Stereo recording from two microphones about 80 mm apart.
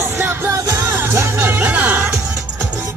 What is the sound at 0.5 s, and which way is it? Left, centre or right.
Music, right.